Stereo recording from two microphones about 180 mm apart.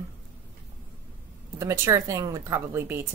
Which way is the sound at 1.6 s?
15° right (ahead or behind).